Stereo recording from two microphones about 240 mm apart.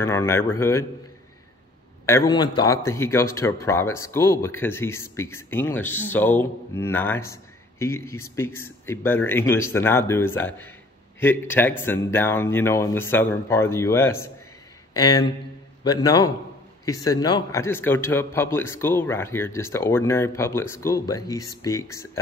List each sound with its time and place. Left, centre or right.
0.0 s a man's voice: centre
2.0 s a man's voice: centre